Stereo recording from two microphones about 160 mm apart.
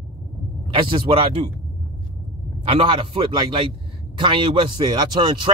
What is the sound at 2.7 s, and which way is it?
A man's voice, 35° right (ahead or behind).